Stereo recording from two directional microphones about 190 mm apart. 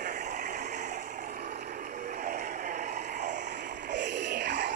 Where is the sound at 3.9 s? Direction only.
65° right (ahead or behind).